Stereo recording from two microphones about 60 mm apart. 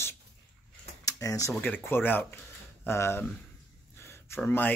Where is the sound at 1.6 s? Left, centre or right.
Left.